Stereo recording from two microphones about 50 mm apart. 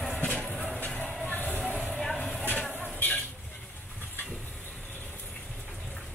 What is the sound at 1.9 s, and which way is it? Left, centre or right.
Vehicle, centre.